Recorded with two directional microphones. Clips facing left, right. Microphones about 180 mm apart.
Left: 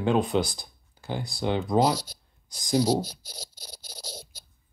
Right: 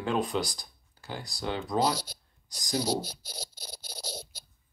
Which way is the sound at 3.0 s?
60° right (ahead or behind).